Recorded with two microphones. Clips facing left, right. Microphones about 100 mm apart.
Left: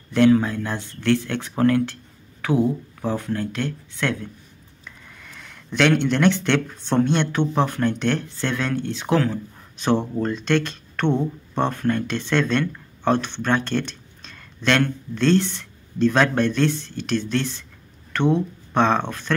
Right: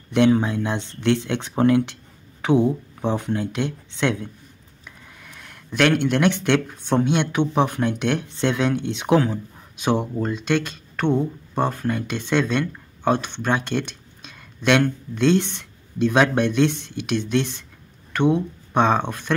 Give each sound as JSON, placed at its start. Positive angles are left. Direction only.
{"t": 0.1, "sound": "speech", "side_deg": -15}
{"t": 4.8, "sound": "speech", "side_deg": -5}